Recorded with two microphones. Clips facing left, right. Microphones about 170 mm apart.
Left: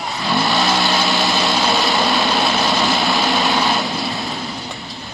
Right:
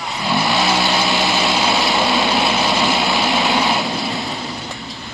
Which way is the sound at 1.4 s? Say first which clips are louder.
Even; centre (ahead or behind).